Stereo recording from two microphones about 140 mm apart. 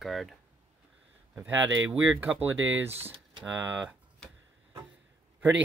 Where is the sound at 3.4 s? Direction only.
15° right (ahead or behind).